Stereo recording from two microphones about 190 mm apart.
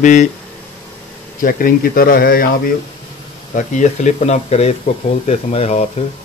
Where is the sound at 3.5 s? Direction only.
40° left (ahead or behind).